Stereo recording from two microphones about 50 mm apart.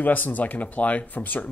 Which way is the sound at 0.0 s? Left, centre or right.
Left.